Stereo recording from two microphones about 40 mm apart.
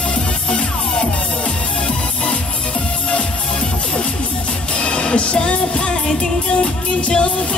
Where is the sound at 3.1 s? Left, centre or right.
Left.